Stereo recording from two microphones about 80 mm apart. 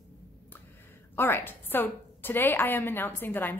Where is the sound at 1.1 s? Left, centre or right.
Left.